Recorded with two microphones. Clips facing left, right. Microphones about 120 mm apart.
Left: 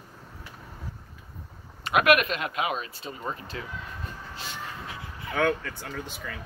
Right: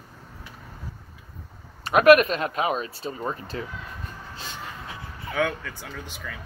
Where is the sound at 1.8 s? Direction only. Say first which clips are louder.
Right 6 dB; 35° right (ahead or behind).